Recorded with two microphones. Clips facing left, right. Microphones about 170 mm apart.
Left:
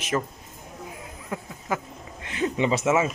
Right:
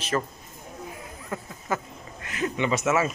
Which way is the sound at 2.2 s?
25° left (ahead or behind).